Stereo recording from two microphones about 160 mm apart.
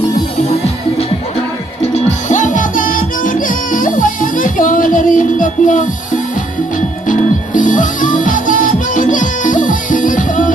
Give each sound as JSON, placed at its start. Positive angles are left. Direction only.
{"t": 2.2, "sound": "music", "side_deg": 50}
{"t": 7.1, "sound": "music", "side_deg": 55}